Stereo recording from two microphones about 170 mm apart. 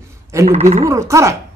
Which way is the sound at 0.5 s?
40° right (ahead or behind).